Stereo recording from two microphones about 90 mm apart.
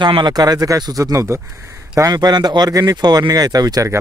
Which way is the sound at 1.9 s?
45° right (ahead or behind).